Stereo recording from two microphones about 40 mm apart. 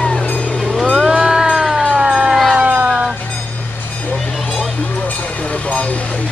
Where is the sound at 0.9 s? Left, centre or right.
Centre.